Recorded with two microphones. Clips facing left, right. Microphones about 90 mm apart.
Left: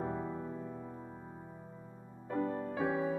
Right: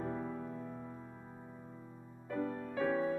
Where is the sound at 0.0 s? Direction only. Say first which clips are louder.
Left 2 dB; 20° left (ahead or behind).